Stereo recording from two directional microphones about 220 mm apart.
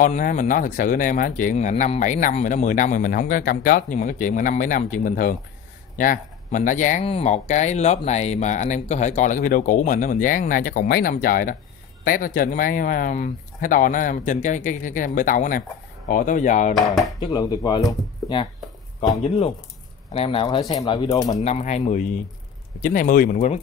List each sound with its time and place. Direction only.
0.0 s speech: 35° left (ahead or behind)
17.2 s speech: 20° left (ahead or behind)
21.4 s speech: 30° left (ahead or behind)